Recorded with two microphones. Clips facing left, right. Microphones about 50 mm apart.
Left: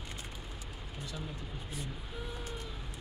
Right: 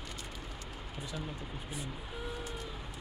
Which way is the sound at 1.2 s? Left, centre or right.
Centre.